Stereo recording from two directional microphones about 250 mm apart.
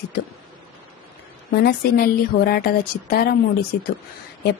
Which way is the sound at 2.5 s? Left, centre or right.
Left.